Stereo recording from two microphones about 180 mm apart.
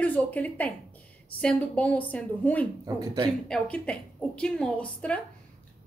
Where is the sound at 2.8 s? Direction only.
20° right (ahead or behind).